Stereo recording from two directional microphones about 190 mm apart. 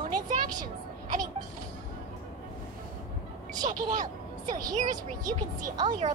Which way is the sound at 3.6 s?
40° right (ahead or behind).